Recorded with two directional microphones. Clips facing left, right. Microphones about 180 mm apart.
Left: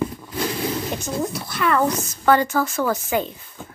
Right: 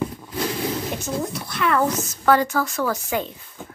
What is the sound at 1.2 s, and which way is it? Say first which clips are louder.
A woman's voice: left 3 dB; 5° left (ahead or behind).